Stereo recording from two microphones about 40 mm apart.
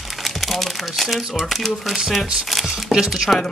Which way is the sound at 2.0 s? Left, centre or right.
Centre.